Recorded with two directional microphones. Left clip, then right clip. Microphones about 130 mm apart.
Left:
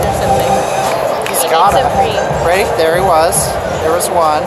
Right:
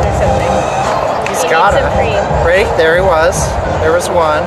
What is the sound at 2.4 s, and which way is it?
Speech, 20° left (ahead or behind).